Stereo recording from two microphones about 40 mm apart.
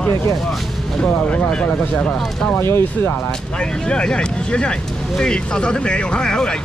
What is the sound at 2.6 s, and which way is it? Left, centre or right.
Speech, left.